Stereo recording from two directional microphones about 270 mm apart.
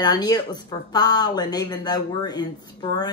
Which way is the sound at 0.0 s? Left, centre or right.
Centre.